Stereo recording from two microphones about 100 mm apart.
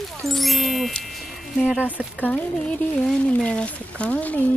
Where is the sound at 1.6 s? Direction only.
10° right (ahead or behind).